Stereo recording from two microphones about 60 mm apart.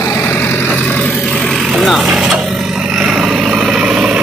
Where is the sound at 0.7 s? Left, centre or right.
Left.